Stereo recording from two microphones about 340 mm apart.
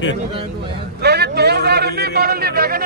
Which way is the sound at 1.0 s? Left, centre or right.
Right.